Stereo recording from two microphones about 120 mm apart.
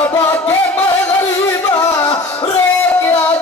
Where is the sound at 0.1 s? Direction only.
25° left (ahead or behind).